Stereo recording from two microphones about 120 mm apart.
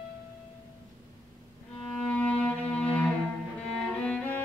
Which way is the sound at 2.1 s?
10° left (ahead or behind).